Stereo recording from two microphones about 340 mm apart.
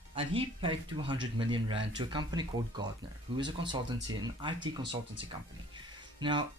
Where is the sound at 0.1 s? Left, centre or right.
Centre.